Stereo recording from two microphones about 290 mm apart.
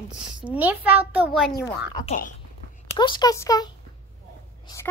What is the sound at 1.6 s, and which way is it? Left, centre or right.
Speech, centre.